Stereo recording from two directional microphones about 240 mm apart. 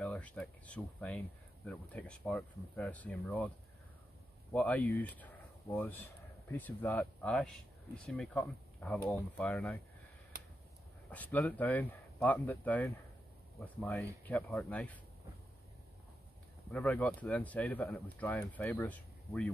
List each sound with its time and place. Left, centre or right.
0.0 s speech: centre
11.1 s speech: centre
16.7 s speech: centre